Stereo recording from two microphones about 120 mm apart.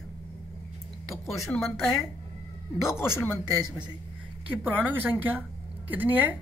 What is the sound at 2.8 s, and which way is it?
Speech, 20° left (ahead or behind).